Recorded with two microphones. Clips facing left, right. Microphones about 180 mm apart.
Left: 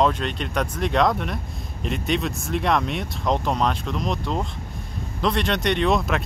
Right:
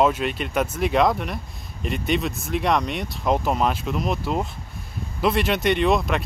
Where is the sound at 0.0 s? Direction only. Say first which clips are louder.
Right 1 dB; 5° right (ahead or behind).